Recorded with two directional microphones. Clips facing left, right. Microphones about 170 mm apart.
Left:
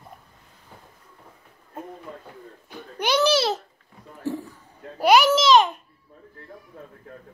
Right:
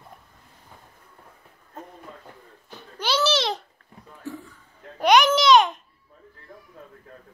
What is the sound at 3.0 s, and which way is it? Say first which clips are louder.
Babbling: left 3 dB; 15° left (ahead or behind).